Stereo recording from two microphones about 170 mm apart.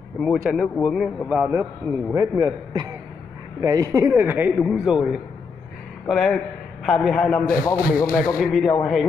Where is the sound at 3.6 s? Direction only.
20° right (ahead or behind); by 7.4 s 5° left (ahead or behind).